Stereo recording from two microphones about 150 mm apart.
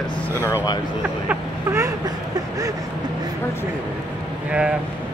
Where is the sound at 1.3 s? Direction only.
20° right (ahead or behind).